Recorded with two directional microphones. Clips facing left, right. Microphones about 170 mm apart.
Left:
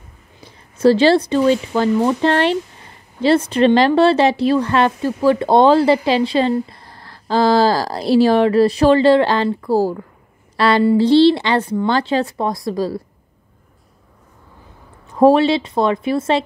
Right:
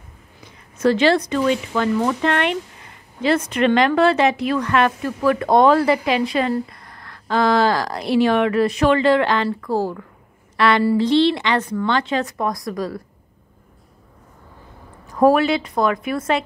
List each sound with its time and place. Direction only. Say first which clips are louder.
0.4 s speech: left 5 dB; 30° left (ahead or behind)
15.0 s a woman's voice: left 3 dB; 25° left (ahead or behind)